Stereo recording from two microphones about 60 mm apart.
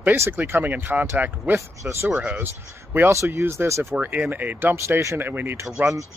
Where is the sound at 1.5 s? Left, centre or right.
Right.